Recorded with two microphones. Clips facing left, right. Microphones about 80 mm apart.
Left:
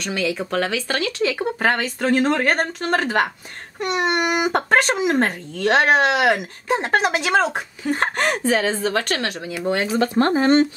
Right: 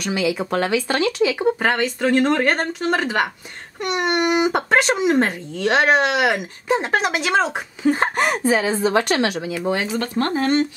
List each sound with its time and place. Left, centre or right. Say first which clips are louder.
0.0 s speech: right 2 dB; centre
8.7 s a woman's voice: right 4 dB; centre
9.6 s speech: left 2 dB; centre
9.9 s speech: left 3 dB; centre